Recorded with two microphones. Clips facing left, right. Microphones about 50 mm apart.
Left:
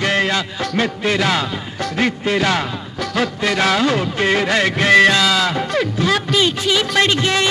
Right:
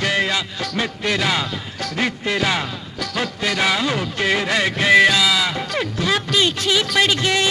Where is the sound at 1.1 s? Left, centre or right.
Centre.